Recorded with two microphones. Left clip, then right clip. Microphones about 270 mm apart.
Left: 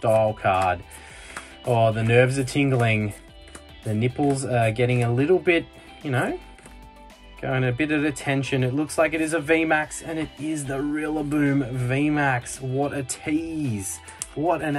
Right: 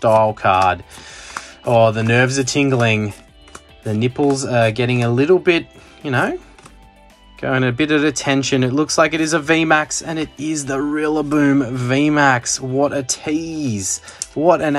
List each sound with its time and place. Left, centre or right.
0.0 s speech: centre
7.3 s speech: centre